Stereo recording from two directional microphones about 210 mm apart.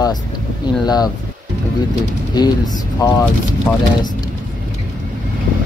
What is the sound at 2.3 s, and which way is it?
Speech, 20° left (ahead or behind).